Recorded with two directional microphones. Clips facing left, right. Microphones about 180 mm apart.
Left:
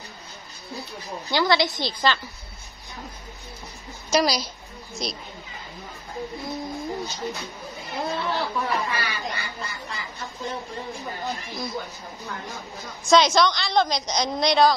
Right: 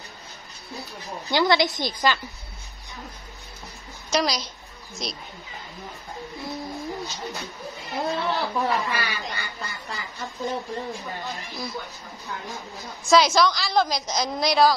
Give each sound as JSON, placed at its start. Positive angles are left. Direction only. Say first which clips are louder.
{"t": 1.3, "sound": "a woman's voice", "louder": "right 1 dB", "side_deg": -20}
{"t": 4.1, "sound": "a woman's voice", "louder": "left 3 dB", "side_deg": 5}
{"t": 6.4, "sound": "a sound", "louder": "right 2 dB", "side_deg": 0}
{"t": 8.0, "sound": "a woman's voice", "louder": "right 1 dB", "side_deg": 0}